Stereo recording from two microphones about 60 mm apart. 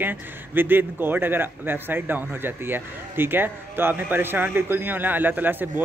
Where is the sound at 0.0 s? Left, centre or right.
Right.